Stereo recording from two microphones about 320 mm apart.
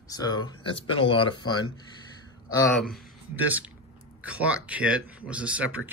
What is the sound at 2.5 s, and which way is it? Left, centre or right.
Speech, centre.